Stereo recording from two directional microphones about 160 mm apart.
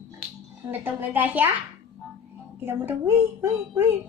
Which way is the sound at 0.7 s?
10° right (ahead or behind).